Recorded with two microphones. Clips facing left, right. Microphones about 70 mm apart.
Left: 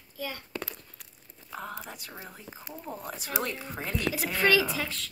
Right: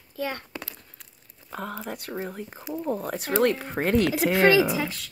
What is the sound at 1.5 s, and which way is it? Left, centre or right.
Speech, right.